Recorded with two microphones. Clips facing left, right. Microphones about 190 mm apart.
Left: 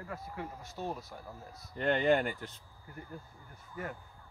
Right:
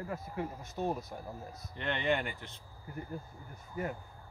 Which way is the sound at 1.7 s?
40° left (ahead or behind).